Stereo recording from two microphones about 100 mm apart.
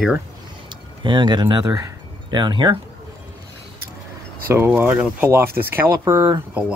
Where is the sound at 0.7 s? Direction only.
50° right (ahead or behind).